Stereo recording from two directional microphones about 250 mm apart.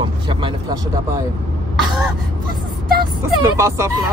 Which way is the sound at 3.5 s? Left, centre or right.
Centre.